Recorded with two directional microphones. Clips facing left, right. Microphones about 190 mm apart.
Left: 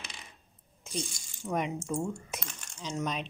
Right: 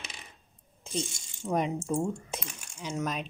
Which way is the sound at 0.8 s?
30° right (ahead or behind).